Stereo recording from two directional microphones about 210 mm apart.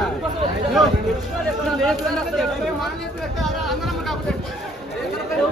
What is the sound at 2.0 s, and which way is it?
Speech, centre (ahead or behind).